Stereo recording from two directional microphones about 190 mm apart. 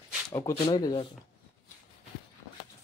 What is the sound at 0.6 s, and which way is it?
Speech, 25° left (ahead or behind).